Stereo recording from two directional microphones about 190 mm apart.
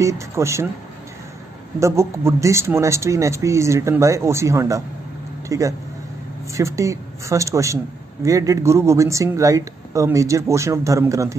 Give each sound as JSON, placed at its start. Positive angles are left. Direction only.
{"t": 0.0, "sound": "a woman's voice", "side_deg": -15}
{"t": 1.8, "sound": "a woman's voice", "side_deg": -15}